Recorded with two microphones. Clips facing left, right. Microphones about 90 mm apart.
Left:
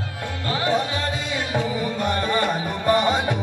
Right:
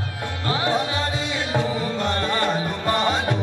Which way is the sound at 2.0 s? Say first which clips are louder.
Left 2 dB; 15° left (ahead or behind).